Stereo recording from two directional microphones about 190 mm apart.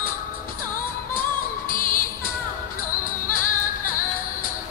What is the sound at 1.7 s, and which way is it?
Music, 45° left (ahead or behind).